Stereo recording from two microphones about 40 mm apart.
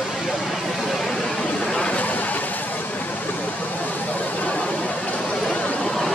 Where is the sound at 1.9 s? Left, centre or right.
Left.